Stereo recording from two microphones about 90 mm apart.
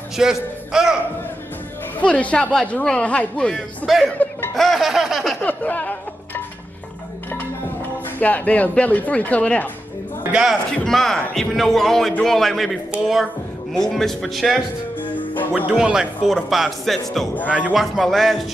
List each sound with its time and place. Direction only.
0.2 s speech: 5° right (ahead or behind)
2.0 s a man's voice: 15° left (ahead or behind)
4.6 s a sound: centre (ahead or behind)
5.4 s music: 15° left (ahead or behind)
8.2 s speech: 15° left (ahead or behind)
10.3 s a man's voice: 5° right (ahead or behind)
13.7 s a man's voice: 5° left (ahead or behind)
15.5 s a man's voice: 10° right (ahead or behind)
17.5 s speech: 10° right (ahead or behind)
17.8 s a man's voice: centre (ahead or behind)